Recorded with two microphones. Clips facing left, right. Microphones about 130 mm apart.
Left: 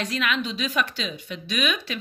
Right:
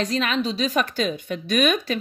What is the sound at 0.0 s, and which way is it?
A woman's voice, 35° right (ahead or behind).